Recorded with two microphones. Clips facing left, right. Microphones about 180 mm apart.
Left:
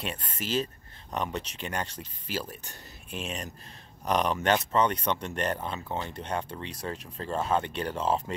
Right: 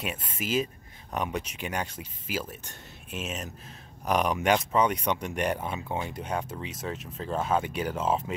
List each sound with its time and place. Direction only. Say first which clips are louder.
0.0 s speech: right 1 dB; 10° right (ahead or behind)